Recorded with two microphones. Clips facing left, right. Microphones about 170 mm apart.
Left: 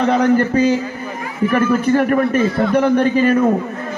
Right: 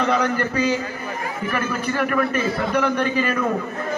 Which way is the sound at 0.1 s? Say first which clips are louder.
Left 7 dB; 50° left (ahead or behind).